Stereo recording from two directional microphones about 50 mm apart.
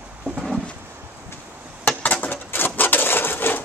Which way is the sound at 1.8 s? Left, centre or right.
Left.